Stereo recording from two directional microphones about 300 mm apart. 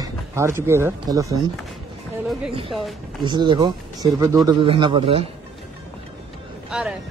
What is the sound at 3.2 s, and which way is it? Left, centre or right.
Speech, centre.